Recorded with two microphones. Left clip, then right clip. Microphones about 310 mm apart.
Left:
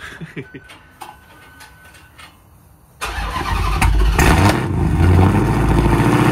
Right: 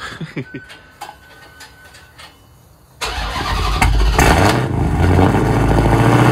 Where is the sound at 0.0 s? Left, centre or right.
Centre.